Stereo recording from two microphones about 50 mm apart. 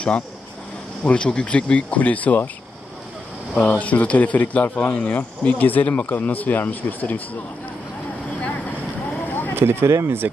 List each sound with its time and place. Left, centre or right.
1.0 s speech: left
3.7 s speech: left
9.3 s a sound: left
9.6 s speech: right